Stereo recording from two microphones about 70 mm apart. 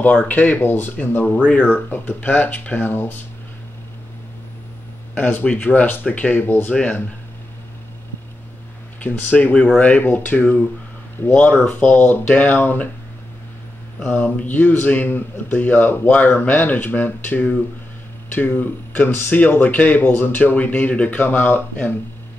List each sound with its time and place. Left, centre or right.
0.0 s speech: left
5.1 s speech: left
9.0 s speech: left
14.0 s speech: left